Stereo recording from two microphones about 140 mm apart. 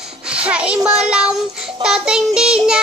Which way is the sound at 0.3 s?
10° right (ahead or behind).